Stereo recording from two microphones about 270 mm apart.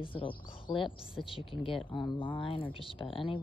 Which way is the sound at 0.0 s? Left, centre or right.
Centre.